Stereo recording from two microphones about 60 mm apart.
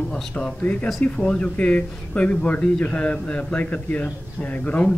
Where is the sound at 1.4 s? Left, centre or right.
Left.